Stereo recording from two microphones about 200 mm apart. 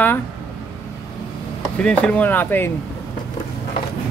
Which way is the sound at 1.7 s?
5° left (ahead or behind).